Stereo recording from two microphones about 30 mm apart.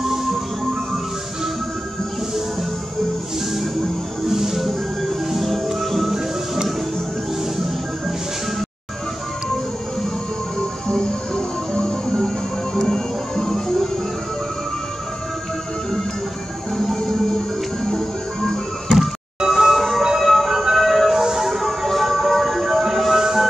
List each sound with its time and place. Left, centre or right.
0.0 s music: centre
4.3 s music: centre
10.9 s music: left
16.7 s music: centre
18.9 s a sound: centre
20.2 s music: centre
20.7 s a sound: centre
21.1 s a sound: centre
21.5 s music: centre
22.4 s music: centre